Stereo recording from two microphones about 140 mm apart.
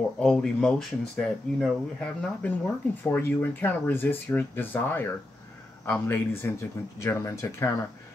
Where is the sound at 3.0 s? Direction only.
15° left (ahead or behind).